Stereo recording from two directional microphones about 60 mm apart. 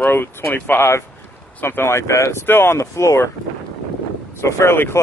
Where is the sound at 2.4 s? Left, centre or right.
Left.